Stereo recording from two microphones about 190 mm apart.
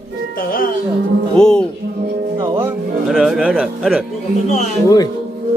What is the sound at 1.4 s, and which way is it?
Speech, 5° left (ahead or behind).